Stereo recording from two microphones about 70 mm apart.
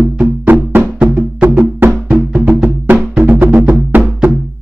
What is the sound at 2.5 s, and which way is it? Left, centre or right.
Music, right.